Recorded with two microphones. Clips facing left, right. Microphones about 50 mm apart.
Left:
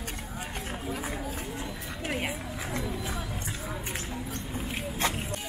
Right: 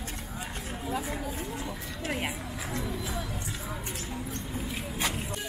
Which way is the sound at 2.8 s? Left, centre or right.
Centre.